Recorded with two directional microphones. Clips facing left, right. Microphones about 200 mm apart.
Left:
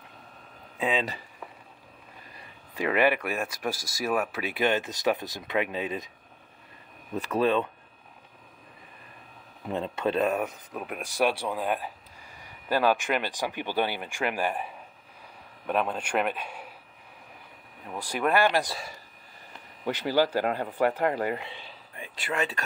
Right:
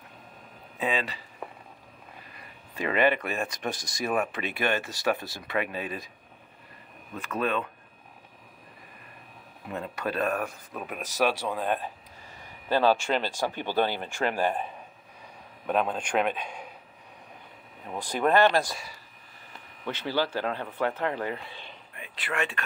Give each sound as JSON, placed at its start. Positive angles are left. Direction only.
{"t": 2.7, "sound": "speech", "side_deg": 15}
{"t": 4.6, "sound": "speech", "side_deg": 20}
{"t": 7.2, "sound": "speech", "side_deg": 30}
{"t": 9.7, "sound": "speech", "side_deg": 25}
{"t": 12.6, "sound": "a man's voice", "side_deg": -25}
{"t": 13.1, "sound": "speech", "side_deg": 15}
{"t": 15.7, "sound": "speech", "side_deg": 5}
{"t": 17.9, "sound": "speech", "side_deg": 10}
{"t": 19.9, "sound": "speech", "side_deg": 15}
{"t": 21.9, "sound": "a sound", "side_deg": 35}